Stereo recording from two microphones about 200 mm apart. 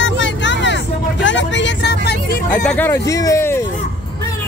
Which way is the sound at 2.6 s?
10° left (ahead or behind).